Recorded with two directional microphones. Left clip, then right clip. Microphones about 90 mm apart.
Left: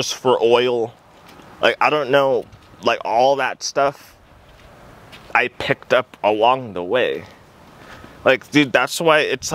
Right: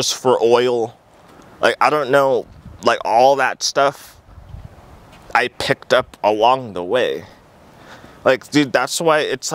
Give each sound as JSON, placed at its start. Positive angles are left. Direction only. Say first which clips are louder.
{"t": 0.0, "sound": "speech", "louder": "right 1 dB", "side_deg": -35}
{"t": 5.6, "sound": "speech", "louder": "right 2 dB", "side_deg": -50}
{"t": 5.9, "sound": "speech", "louder": "right 1 dB", "side_deg": -30}